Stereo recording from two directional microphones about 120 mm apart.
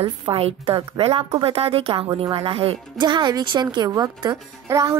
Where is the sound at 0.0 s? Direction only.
55° right (ahead or behind).